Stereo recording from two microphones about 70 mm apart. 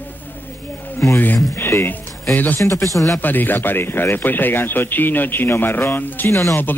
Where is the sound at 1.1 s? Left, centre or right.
Left.